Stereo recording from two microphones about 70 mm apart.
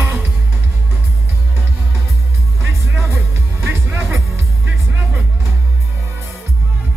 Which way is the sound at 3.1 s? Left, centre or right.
Right.